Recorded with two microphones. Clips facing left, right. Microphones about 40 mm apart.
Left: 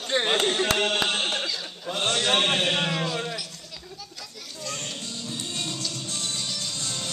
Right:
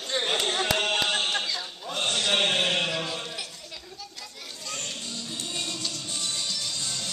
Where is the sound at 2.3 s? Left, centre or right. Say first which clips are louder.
Left 1 dB; centre.